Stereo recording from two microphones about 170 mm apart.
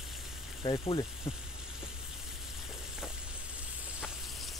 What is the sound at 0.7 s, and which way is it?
Speech, 30° left (ahead or behind).